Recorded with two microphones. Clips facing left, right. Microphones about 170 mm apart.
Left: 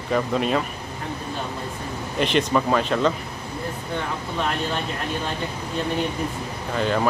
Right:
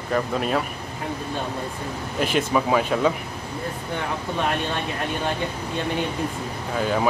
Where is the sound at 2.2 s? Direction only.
5° right (ahead or behind).